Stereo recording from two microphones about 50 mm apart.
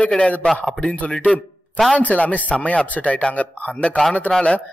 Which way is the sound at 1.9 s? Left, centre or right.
Left.